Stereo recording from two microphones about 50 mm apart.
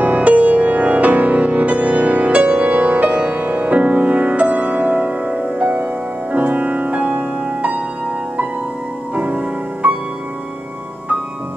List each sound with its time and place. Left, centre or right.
0.0 s music: right
9.1 s music: right